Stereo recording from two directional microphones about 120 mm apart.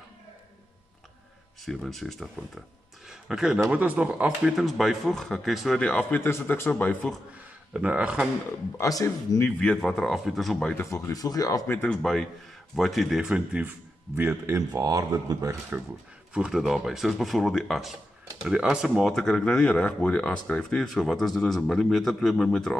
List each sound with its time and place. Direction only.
1.6 s speech: centre (ahead or behind)
7.3 s speech: 10° right (ahead or behind)
8.7 s speech: 25° left (ahead or behind)
9.6 s speech: 5° left (ahead or behind)
10.8 s speech: 25° left (ahead or behind)
11.6 s speech: 15° left (ahead or behind); by 15.5 s 30° right (ahead or behind)
15.7 s speech: 10° right (ahead or behind); by 22.8 s 5° left (ahead or behind)